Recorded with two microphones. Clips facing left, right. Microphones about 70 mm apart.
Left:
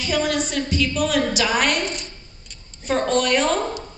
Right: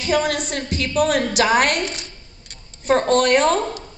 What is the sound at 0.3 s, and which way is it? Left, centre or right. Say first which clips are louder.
A woman's voice: left 1 dB; right.